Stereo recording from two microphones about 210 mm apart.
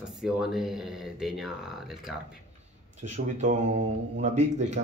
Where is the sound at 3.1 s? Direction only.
35° right (ahead or behind).